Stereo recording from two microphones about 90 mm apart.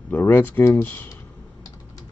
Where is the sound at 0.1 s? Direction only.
20° left (ahead or behind).